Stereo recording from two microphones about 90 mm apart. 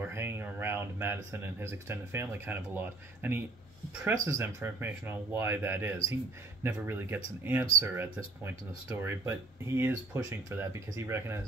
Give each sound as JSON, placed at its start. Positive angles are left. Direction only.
{"t": 0.1, "sound": "speech", "side_deg": -25}
{"t": 4.1, "sound": "speech", "side_deg": -35}